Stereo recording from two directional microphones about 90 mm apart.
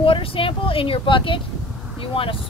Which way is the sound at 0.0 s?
80° left.